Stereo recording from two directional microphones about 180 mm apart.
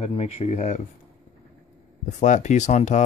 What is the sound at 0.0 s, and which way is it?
Speech, 35° left (ahead or behind).